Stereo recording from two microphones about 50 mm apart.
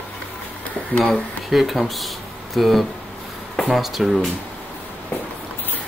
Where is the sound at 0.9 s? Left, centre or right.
Left.